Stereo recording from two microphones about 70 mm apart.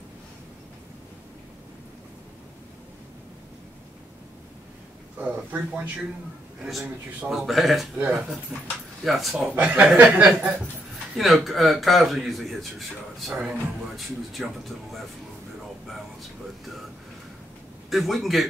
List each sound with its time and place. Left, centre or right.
5.2 s speech: right
7.2 s a man's voice: centre
8.0 s speech: centre
9.0 s a man's voice: centre
9.6 s speech: centre
11.1 s a man's voice: centre
13.3 s speech: centre
13.9 s a man's voice: centre
15.9 s air conditioning: centre
17.8 s a man's voice: centre